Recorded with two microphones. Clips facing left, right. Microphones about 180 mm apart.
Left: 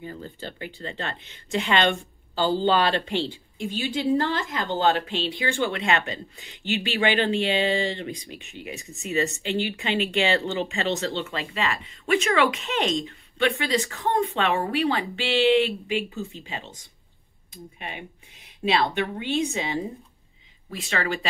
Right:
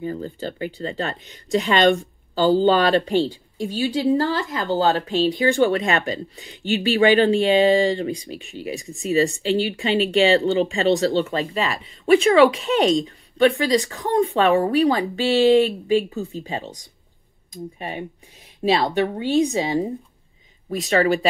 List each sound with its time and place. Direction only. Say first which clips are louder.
0.0 s speech: right 8 dB; 40° right (ahead or behind)